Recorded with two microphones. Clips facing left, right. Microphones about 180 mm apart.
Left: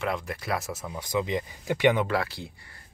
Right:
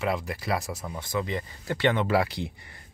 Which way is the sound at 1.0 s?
15° left (ahead or behind).